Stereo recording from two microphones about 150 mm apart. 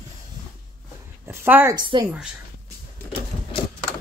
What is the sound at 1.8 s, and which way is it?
Speech, 30° right (ahead or behind).